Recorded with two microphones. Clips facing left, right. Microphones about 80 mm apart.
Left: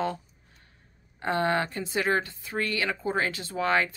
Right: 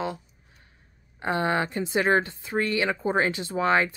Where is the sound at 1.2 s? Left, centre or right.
Centre.